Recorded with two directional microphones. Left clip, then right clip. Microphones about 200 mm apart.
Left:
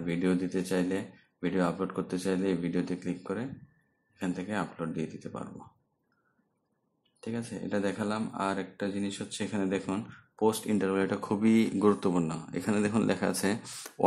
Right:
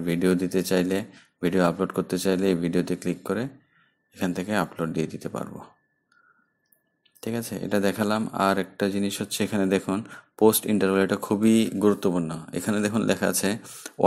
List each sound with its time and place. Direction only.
0.0 s speech: 25° right (ahead or behind)
7.2 s speech: 25° right (ahead or behind)